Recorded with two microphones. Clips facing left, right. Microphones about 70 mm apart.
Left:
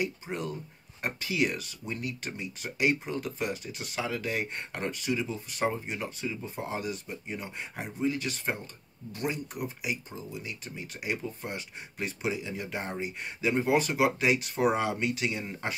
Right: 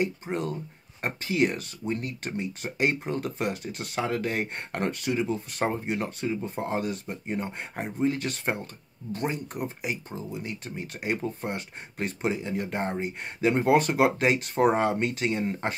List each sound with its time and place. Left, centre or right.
0.0 s speech: right